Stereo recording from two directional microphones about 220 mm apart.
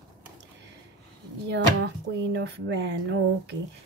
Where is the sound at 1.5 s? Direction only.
50° right (ahead or behind).